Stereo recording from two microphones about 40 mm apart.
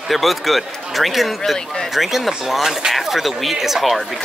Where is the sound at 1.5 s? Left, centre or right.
Centre.